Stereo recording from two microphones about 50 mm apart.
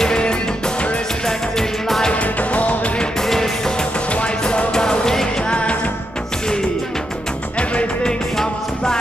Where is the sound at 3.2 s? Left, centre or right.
Centre; by 5.9 s left.